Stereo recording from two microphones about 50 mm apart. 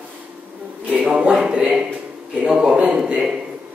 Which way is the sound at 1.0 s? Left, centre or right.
Centre.